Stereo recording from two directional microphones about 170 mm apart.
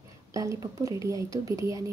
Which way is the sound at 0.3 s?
20° right (ahead or behind).